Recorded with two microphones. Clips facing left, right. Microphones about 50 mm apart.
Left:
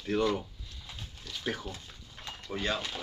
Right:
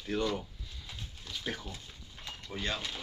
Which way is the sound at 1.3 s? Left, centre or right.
Centre.